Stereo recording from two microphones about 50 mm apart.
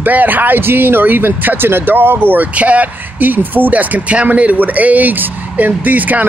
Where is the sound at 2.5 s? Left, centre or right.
Right.